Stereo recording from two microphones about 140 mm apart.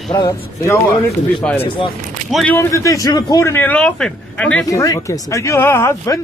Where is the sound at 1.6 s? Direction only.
35° left (ahead or behind).